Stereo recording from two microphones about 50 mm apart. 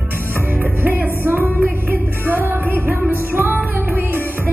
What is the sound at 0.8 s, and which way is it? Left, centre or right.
Music, right.